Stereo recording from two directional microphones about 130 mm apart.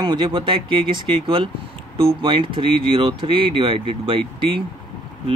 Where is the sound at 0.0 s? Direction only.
35° right (ahead or behind).